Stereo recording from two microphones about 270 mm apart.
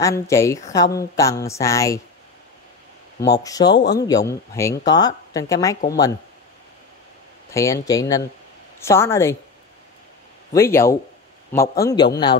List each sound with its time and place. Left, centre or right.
0.0 s speech: centre
3.3 s speech: centre
3.7 s speech: left
4.0 s speech: centre
7.5 s speech: centre
10.5 s speech: centre